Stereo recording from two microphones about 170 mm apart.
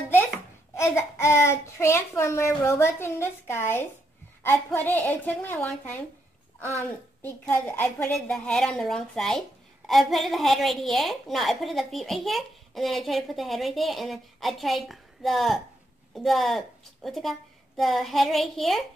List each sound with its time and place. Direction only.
0.7 s a child's voice: 15° left (ahead or behind)
7.2 s a woman's voice: 10° left (ahead or behind)